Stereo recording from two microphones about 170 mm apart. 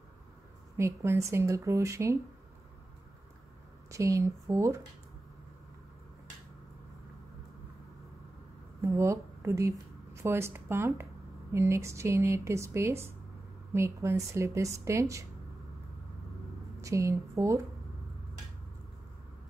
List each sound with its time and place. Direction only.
0.7 s speech: 15° right (ahead or behind)
3.9 s speech: 20° right (ahead or behind)
8.8 s speech: 15° right (ahead or behind)
16.8 s speech: 20° right (ahead or behind)